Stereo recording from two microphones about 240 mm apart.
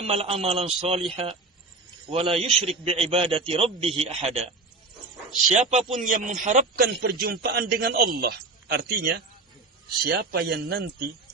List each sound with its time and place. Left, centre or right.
0.0 s a man's voice: right
5.5 s a man's voice: right